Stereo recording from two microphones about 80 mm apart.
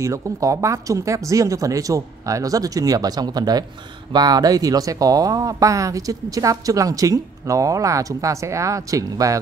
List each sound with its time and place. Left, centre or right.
0.0 s speech: right